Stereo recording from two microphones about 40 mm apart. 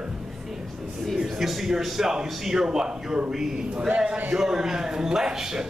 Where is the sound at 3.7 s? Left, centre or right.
Right.